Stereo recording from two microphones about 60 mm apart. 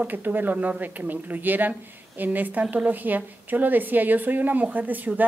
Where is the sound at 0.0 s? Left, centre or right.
Right.